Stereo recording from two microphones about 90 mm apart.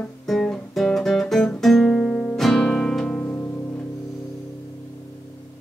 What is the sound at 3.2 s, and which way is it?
Music, 20° left (ahead or behind).